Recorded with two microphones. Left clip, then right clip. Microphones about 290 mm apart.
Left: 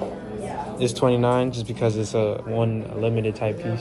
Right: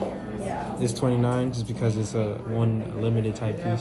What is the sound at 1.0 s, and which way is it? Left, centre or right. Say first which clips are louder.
Speech: left 7 dB; left.